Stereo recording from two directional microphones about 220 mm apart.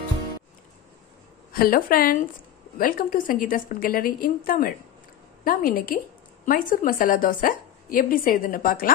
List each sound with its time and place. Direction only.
1.5 s a woman's voice: 40° left (ahead or behind)